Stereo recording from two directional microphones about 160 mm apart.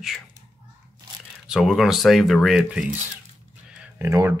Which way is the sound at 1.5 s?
Centre (ahead or behind).